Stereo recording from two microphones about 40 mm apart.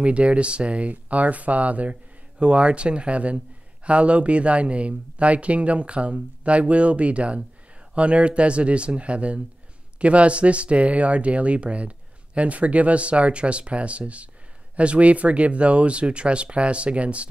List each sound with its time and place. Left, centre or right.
0.0 s speech: right